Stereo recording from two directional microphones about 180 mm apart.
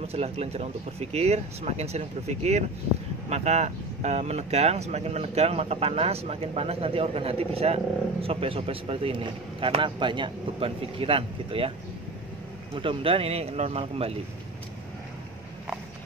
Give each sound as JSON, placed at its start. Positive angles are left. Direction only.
{"t": 0.1, "sound": "speech", "side_deg": -35}
{"t": 12.7, "sound": "speech", "side_deg": -30}